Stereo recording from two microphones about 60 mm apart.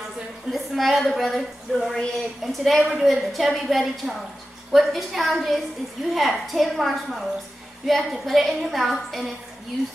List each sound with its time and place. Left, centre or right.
0.5 s a woman's voice: centre
2.8 s a woman's voice: centre